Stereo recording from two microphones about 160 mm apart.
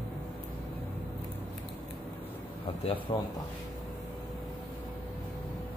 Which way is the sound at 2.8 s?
35° left (ahead or behind).